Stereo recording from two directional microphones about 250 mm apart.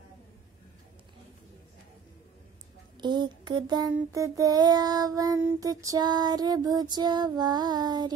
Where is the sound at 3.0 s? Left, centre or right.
Centre.